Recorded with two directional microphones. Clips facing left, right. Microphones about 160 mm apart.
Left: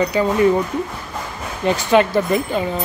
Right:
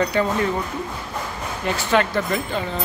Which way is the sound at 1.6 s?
15° left (ahead or behind).